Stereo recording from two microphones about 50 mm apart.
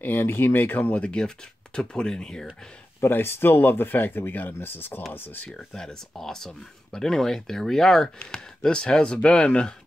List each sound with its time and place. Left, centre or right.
0.0 s speech: left; by 2.4 s centre
3.1 s speech: left
5.8 s speech: centre